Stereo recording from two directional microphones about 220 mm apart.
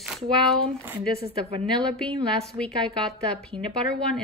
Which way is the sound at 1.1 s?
25° right (ahead or behind).